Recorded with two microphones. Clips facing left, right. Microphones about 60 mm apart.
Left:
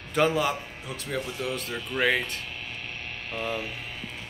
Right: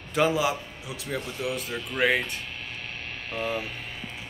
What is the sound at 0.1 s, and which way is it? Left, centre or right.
A man's voice, centre.